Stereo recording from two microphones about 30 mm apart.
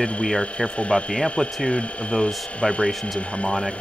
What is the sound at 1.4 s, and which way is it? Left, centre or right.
Speech, left.